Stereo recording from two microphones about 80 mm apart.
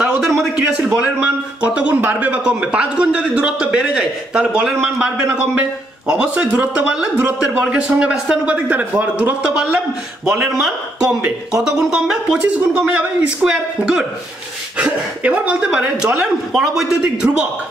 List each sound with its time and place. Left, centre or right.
0.0 s a sound: centre
0.6 s speech: centre
10.3 s a man's voice: centre